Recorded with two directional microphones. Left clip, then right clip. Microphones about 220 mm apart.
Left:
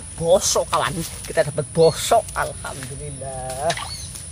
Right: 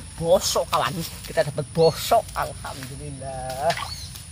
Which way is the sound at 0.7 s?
20° left (ahead or behind).